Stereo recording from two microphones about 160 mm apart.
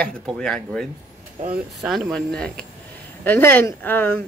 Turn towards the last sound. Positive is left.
turn(degrees=10)  # may be behind; listen again after turning